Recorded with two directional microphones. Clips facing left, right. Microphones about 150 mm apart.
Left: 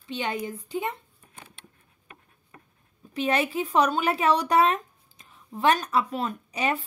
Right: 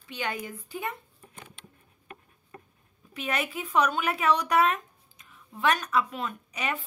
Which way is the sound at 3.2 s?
30° left (ahead or behind).